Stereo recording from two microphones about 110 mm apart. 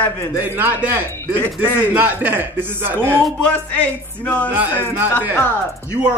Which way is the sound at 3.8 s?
10° left (ahead or behind).